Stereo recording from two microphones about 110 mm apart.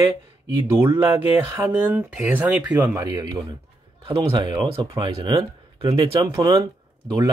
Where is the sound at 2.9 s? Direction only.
35° right (ahead or behind).